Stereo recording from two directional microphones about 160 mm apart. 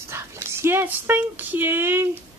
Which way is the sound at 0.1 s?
15° right (ahead or behind).